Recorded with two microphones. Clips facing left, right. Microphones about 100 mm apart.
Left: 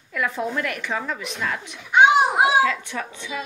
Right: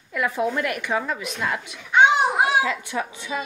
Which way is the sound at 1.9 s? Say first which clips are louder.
Left 1 dB; 10° left (ahead or behind).